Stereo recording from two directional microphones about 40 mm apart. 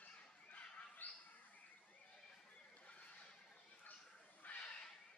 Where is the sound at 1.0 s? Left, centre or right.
Left.